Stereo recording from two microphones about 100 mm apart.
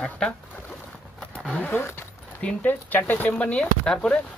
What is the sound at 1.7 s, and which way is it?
Speech, 20° left (ahead or behind).